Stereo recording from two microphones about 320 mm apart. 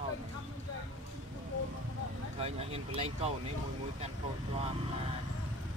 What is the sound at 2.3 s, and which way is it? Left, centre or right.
Speech, centre.